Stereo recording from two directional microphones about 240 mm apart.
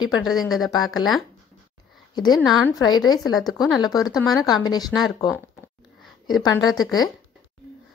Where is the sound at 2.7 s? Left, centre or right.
Centre.